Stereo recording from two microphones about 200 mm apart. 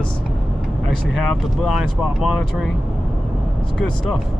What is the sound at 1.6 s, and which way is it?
Speech, centre (ahead or behind).